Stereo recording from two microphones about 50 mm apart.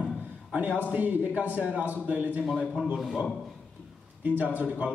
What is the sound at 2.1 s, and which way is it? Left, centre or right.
Speech, right.